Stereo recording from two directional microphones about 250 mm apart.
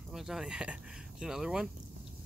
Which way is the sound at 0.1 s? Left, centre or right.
Centre.